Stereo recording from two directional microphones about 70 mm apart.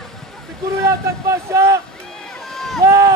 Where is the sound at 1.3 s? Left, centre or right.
Right.